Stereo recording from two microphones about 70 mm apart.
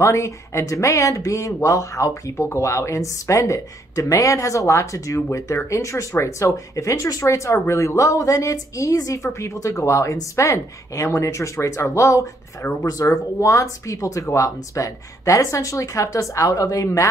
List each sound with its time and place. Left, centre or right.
0.0 s speech: left